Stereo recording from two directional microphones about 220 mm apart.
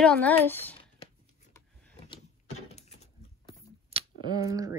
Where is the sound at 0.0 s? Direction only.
5° left (ahead or behind).